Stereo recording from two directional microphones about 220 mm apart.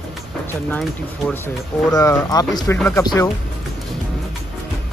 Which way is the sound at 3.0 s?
20° left (ahead or behind).